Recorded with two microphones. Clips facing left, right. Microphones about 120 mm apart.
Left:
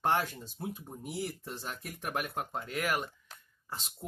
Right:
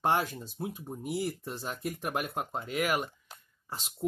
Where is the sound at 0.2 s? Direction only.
10° right (ahead or behind).